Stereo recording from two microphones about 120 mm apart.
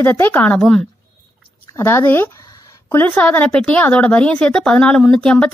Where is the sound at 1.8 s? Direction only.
20° left (ahead or behind).